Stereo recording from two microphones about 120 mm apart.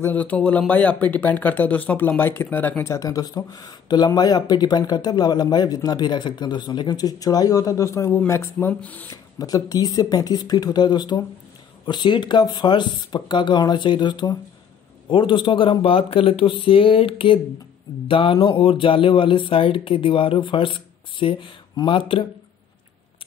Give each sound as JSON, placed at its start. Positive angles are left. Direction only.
{"t": 0.0, "sound": "speech", "side_deg": 15}
{"t": 9.1, "sound": "speech", "side_deg": 30}